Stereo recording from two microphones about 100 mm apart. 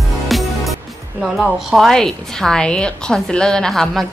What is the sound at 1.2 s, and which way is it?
A woman's voice, centre (ahead or behind).